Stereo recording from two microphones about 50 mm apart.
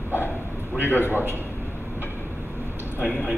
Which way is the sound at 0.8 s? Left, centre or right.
Left.